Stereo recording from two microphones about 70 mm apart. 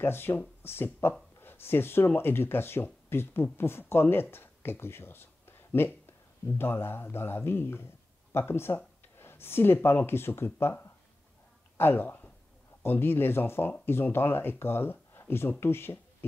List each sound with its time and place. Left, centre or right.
0.0 s speech: left